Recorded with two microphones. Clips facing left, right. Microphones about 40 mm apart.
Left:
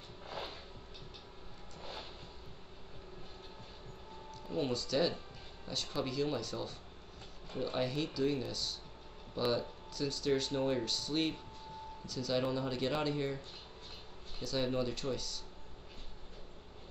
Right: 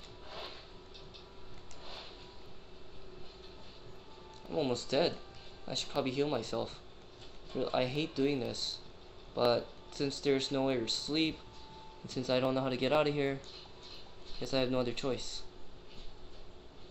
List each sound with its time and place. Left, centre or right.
1.8 s vehicle: left
4.5 s speech: right
4.7 s speech: right
14.4 s speech: right